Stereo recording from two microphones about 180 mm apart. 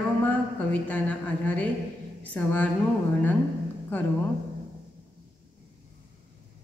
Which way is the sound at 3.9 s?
10° left (ahead or behind).